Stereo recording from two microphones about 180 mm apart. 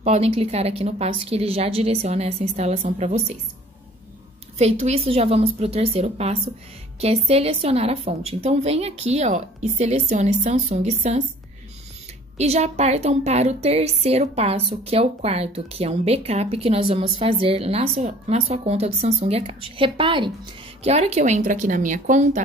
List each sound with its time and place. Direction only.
0.0 s a woman's voice: 35° right (ahead or behind)
4.6 s a woman's voice: 35° right (ahead or behind)
12.4 s a woman's voice: 35° right (ahead or behind)